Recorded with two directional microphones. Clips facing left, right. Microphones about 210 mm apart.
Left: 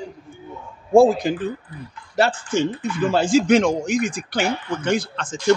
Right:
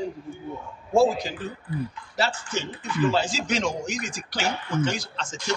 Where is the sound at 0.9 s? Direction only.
55° left (ahead or behind).